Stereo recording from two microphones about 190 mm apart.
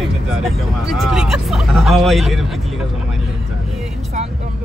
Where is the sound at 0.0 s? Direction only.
Centre (ahead or behind).